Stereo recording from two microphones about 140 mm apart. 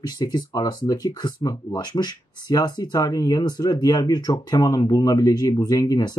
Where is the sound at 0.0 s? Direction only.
30° left (ahead or behind).